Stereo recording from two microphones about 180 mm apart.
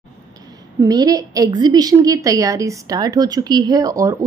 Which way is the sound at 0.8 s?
20° right (ahead or behind).